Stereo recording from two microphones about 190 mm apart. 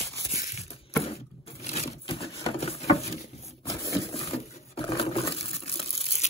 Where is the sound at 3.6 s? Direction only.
15° left (ahead or behind).